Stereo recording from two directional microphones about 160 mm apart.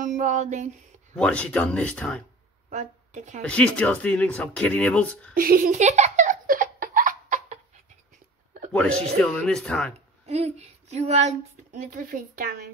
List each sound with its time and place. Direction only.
0.0 s a woman's voice: 55° right (ahead or behind)
1.1 s speech: 5° left (ahead or behind)
2.7 s a woman's voice: 50° right (ahead or behind)
3.4 s speech: 5° left (ahead or behind)
5.3 s laughter: 65° right (ahead or behind)
8.7 s speech: 5° left (ahead or behind)
10.2 s a woman's voice: 40° right (ahead or behind); by 12.5 s 65° right (ahead or behind)